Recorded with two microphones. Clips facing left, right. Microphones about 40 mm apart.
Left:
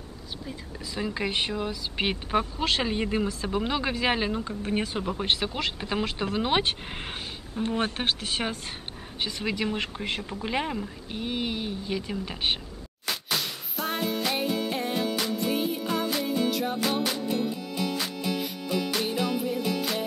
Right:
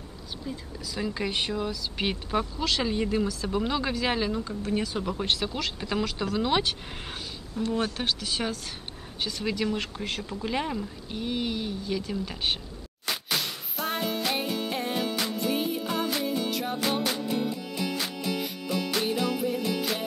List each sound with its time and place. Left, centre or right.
0.9 s speech: centre
3.4 s speech: centre
5.0 s speech: left
9.2 s speech: left
13.4 s music: centre
19.0 s music: centre